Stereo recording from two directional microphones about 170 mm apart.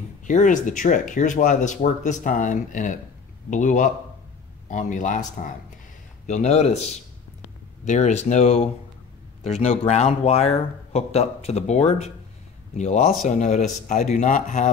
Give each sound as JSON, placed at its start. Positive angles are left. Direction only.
{"t": 0.2, "sound": "speech", "side_deg": 50}